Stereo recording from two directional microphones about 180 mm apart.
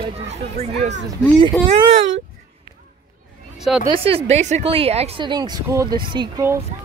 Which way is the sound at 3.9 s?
30° right (ahead or behind).